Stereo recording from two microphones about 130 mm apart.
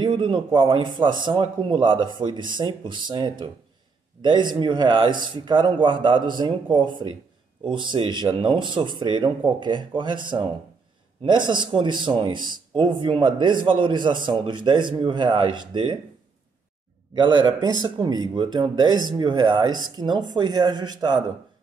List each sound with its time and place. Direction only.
0.0 s speech: 40° right (ahead or behind)
17.1 s speech: 35° right (ahead or behind)